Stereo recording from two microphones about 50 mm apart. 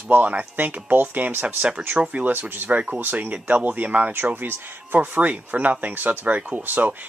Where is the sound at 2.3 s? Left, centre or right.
Right.